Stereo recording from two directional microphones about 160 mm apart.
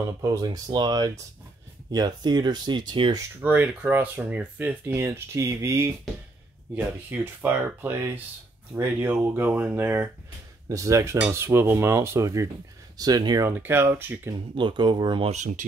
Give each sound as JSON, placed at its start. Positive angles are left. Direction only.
{"t": 0.2, "sound": "speech", "side_deg": -20}
{"t": 3.3, "sound": "speech", "side_deg": -10}
{"t": 13.5, "sound": "speech", "side_deg": -15}
{"t": 14.5, "sound": "speech", "side_deg": -30}
{"t": 15.3, "sound": "speech", "side_deg": -45}